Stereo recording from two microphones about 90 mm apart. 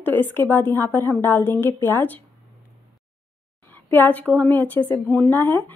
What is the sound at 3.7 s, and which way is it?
A woman's voice, 20° left (ahead or behind).